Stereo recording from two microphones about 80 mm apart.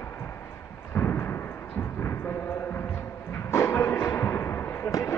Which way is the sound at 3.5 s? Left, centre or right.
Left.